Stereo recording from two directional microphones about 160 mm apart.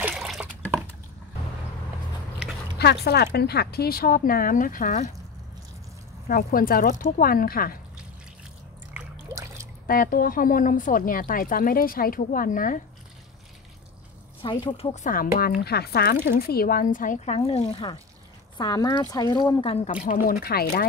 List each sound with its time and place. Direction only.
0.1 s water: centre (ahead or behind)
2.8 s speech: 90° left; by 5.1 s 50° left (ahead or behind)
6.2 s speech: 65° left (ahead or behind)
9.3 s a sound: 20° right (ahead or behind)
9.8 s speech: 60° left (ahead or behind)
14.4 s speech: 30° left (ahead or behind)
15.0 s speech: 65° left (ahead or behind); by 18.9 s 25° left (ahead or behind)
18.9 s speech: 15° left (ahead or behind)
19.3 s speech: 35° left (ahead or behind)
20.1 s speech: 70° left (ahead or behind)